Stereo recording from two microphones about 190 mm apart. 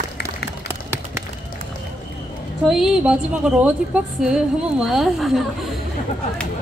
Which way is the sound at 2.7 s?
5° right (ahead or behind).